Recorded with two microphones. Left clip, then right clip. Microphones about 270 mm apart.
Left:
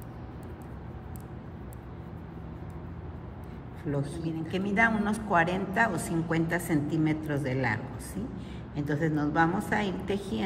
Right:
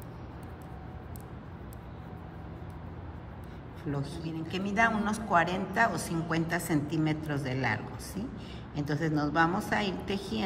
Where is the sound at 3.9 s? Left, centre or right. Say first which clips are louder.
Left 4 dB; centre.